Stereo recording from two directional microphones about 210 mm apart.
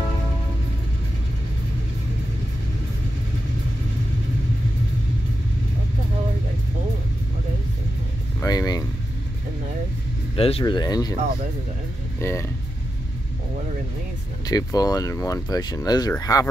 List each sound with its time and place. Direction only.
8.4 s vehicle: 15° left (ahead or behind)
10.3 s speech: 25° left (ahead or behind)
12.2 s speech: 15° left (ahead or behind)
14.4 s speech: 15° left (ahead or behind)